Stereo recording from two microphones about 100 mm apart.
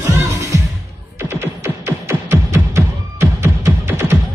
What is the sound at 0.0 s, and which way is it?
Music, 30° right (ahead or behind).